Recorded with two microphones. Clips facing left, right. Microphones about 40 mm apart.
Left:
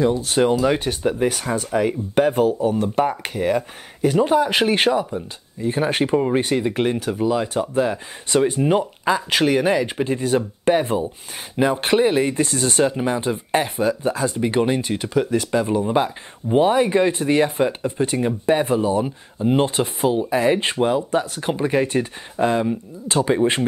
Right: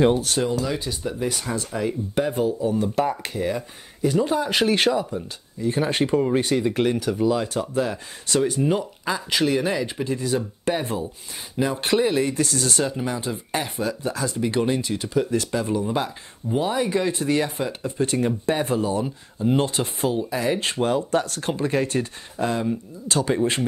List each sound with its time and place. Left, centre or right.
0.4 s speech: left
3.0 s speech: left
15.3 s speech: left
20.9 s speech: centre